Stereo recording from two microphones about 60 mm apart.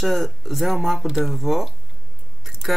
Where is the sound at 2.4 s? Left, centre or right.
Centre.